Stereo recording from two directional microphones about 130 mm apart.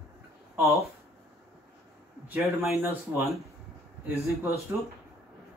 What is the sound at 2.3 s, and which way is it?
Speech, 20° right (ahead or behind).